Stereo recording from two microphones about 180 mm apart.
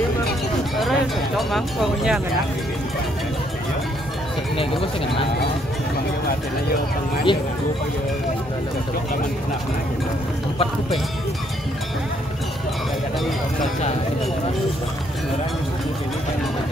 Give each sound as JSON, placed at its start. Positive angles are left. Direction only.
{"t": 0.7, "sound": "speech", "side_deg": 0}
{"t": 7.3, "sound": "speech", "side_deg": 25}